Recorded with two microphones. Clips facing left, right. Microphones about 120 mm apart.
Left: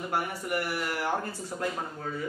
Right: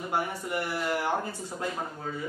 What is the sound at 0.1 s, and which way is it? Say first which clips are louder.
A man's voice: right 1 dB; 20° right (ahead or behind).